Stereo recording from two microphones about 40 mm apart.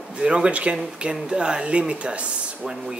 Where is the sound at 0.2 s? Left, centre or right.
Right.